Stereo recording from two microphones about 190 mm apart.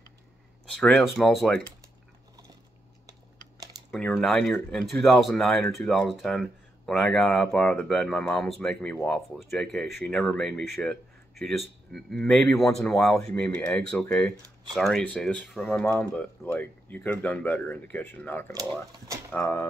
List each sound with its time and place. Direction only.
0.7 s speech: 5° left (ahead or behind)
3.1 s typing: 20° right (ahead or behind)
3.9 s speech: centre (ahead or behind)
18.5 s speech: 20° right (ahead or behind)
19.3 s speech: 15° left (ahead or behind)